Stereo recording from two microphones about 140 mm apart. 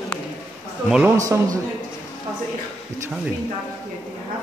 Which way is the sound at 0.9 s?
15° right (ahead or behind).